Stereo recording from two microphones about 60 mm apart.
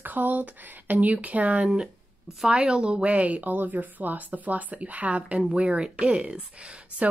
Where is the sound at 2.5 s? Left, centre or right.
Centre.